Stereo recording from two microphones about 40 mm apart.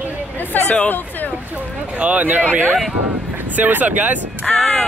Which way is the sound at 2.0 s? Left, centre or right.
Right.